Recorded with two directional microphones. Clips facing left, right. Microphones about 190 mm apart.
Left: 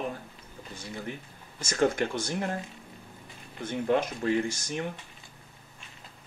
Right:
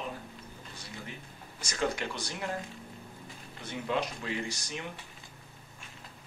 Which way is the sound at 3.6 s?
50° left (ahead or behind).